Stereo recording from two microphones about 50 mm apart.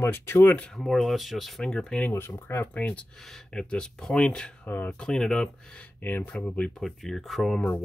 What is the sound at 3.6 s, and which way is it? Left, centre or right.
Speech, centre.